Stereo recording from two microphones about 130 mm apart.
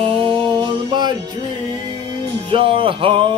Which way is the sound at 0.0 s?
45° right (ahead or behind).